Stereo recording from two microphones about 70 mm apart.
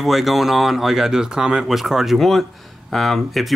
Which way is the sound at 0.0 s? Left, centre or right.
Centre.